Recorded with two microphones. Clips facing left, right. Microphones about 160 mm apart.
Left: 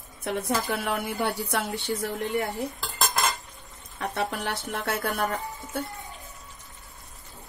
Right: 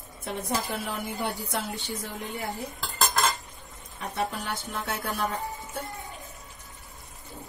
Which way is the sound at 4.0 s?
70° left (ahead or behind).